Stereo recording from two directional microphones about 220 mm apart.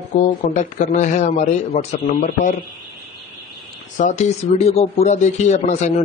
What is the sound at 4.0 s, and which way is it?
Speech, 30° left (ahead or behind).